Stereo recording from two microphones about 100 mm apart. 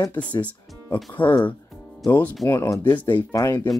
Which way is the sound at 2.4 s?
30° left (ahead or behind).